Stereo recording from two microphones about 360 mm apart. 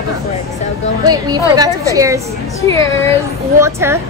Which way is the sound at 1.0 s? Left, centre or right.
Centre.